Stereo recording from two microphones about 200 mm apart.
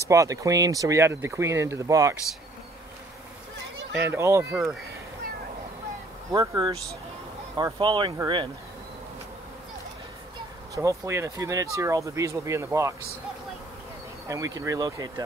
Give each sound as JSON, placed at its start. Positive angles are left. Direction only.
{"t": 0.1, "sound": "speech", "side_deg": -15}
{"t": 4.1, "sound": "speech", "side_deg": -15}
{"t": 6.3, "sound": "speech", "side_deg": -20}
{"t": 10.7, "sound": "speech", "side_deg": -15}
{"t": 14.2, "sound": "speech", "side_deg": -15}